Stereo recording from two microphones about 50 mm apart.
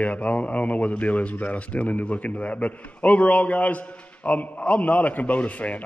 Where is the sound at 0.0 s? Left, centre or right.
Left.